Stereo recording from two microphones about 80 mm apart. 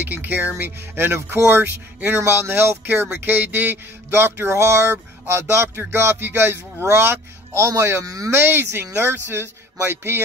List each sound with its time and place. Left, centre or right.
0.0 s speech: right
8.0 s speech: right
8.3 s speech: right